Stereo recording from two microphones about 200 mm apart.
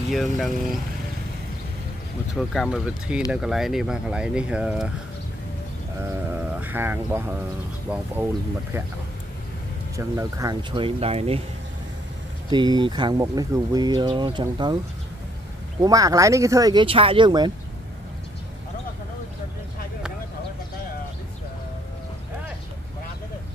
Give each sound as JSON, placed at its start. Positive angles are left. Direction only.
{"t": 0.1, "sound": "speech", "side_deg": 0}
{"t": 2.3, "sound": "speech", "side_deg": 0}
{"t": 6.4, "sound": "speech", "side_deg": -10}
{"t": 9.9, "sound": "speech", "side_deg": -15}
{"t": 12.4, "sound": "speech", "side_deg": -20}
{"t": 15.8, "sound": "speech", "side_deg": -15}